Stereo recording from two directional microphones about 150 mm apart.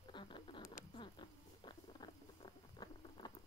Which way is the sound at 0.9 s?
30° left (ahead or behind).